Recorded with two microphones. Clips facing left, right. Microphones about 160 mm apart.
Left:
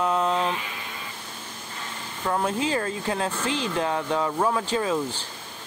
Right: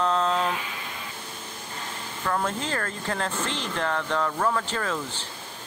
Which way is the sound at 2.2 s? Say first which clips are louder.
Left 3 dB; 15° left (ahead or behind).